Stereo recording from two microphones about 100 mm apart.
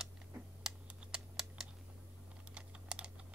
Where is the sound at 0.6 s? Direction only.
5° right (ahead or behind).